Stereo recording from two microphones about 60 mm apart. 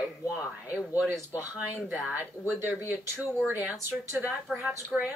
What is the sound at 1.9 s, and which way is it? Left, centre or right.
Speech, right.